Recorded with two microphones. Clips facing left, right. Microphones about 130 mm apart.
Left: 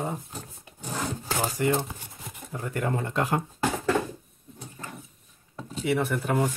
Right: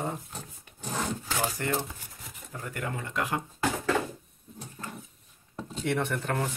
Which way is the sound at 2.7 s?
35° left (ahead or behind).